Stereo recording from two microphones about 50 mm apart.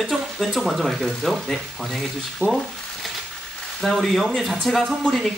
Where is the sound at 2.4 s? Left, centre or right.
Right.